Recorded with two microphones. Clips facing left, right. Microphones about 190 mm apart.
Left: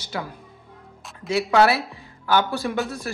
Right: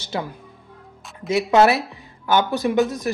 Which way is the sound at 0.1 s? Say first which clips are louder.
Right 4 dB; 25° right (ahead or behind).